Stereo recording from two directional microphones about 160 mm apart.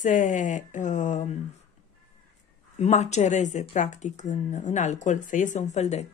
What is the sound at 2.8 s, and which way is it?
Speech, 45° left (ahead or behind).